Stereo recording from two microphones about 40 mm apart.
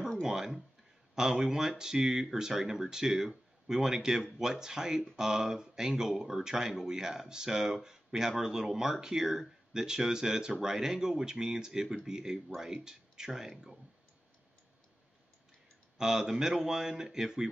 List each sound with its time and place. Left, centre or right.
0.0 s speech: centre
16.0 s speech: centre